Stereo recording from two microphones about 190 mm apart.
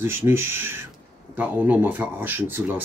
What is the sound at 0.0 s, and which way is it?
Speech, 10° right (ahead or behind).